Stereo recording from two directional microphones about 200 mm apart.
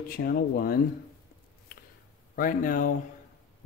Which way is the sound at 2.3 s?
45° left (ahead or behind).